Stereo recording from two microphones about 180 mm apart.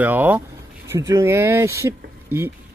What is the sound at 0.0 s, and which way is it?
Speech, 10° right (ahead or behind).